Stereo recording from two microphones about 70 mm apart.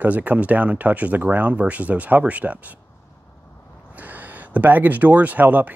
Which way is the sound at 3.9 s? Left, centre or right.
Right.